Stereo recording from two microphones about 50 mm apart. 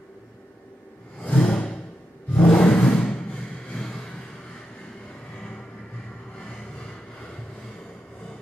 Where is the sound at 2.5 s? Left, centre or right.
Centre.